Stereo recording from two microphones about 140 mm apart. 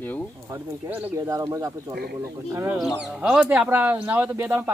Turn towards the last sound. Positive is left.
turn(degrees=-15)  # may be behind; listen again after turning